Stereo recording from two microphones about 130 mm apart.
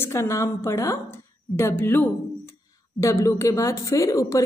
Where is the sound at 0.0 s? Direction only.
20° left (ahead or behind).